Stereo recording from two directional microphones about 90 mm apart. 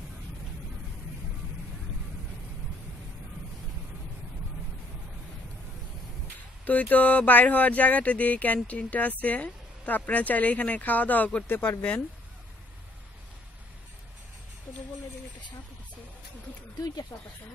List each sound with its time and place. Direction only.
6.6 s speech: 20° left (ahead or behind)
17.1 s speech: 35° left (ahead or behind)